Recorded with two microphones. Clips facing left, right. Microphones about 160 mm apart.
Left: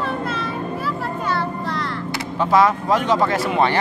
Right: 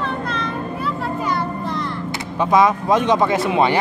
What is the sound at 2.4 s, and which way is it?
Speech, 15° right (ahead or behind).